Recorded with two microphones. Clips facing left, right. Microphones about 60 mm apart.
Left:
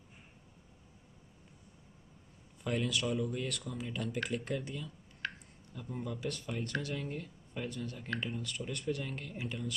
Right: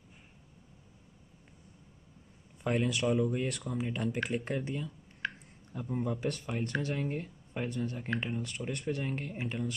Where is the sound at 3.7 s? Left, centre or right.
Right.